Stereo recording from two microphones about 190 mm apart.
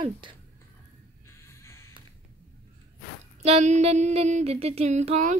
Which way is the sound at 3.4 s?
35° right (ahead or behind).